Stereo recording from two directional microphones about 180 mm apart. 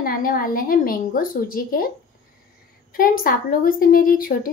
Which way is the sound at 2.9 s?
55° left (ahead or behind).